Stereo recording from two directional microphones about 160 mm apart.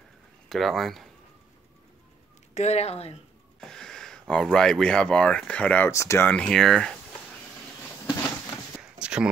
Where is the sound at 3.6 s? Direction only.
5° left (ahead or behind).